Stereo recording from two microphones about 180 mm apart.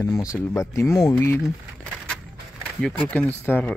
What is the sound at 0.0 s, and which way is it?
Speech, 15° left (ahead or behind).